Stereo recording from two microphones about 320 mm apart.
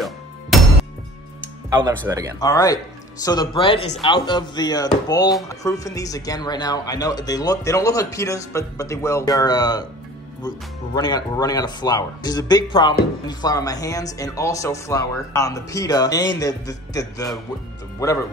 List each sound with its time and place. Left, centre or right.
0.5 s music: centre
1.7 s speech: centre
2.4 s speech: centre
11.0 s speech: centre